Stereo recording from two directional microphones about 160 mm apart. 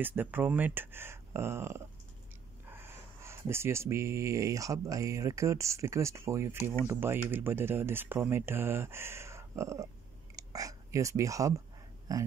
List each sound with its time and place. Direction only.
0.0 s speech: 10° right (ahead or behind)